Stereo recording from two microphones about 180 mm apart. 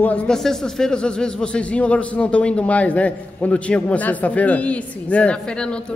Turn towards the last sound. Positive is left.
turn(degrees=5)  # may be behind; listen again after turning